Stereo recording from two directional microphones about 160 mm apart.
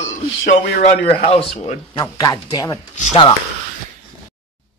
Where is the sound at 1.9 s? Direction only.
20° left (ahead or behind).